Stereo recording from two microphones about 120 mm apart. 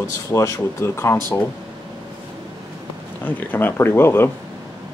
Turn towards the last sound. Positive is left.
turn(degrees=20)  # may be behind; listen again after turning